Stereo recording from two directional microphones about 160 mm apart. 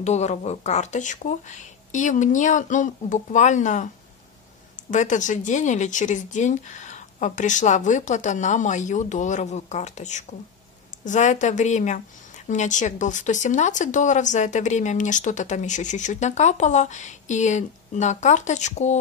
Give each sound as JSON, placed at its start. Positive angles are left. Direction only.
{"t": 0.0, "sound": "speech", "side_deg": 45}
{"t": 4.9, "sound": "speech", "side_deg": 50}